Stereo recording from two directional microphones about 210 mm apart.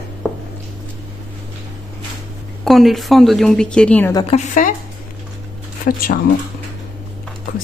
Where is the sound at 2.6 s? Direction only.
Centre (ahead or behind).